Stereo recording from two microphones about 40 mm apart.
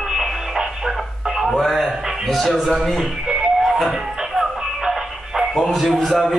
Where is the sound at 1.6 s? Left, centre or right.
Centre.